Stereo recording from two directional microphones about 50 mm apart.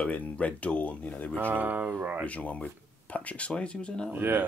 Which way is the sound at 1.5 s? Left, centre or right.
Right.